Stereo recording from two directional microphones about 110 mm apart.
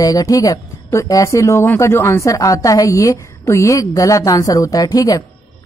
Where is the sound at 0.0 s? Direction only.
35° left (ahead or behind).